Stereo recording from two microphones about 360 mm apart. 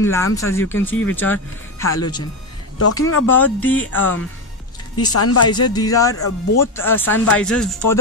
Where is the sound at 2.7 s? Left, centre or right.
Left.